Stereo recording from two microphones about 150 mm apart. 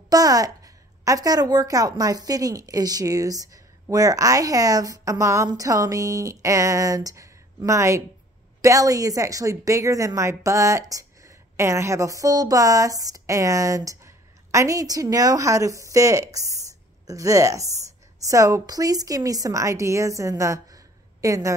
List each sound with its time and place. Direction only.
0.1 s a woman's voice: 25° right (ahead or behind)